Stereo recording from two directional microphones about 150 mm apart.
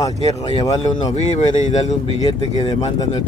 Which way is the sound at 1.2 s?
50° left (ahead or behind).